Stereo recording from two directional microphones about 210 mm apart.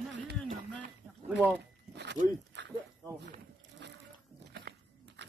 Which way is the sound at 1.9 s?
55° right (ahead or behind).